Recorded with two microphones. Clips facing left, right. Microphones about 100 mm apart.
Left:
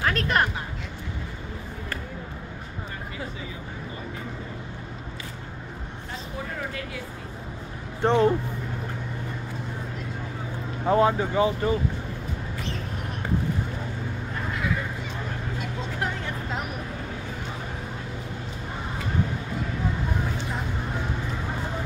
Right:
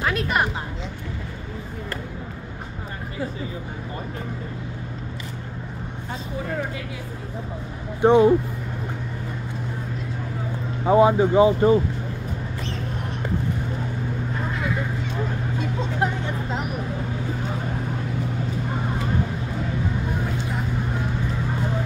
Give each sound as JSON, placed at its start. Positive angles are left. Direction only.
{"t": 0.0, "sound": "a sound", "side_deg": -5}
{"t": 8.0, "sound": "speech", "side_deg": -10}
{"t": 10.9, "sound": "speech", "side_deg": -15}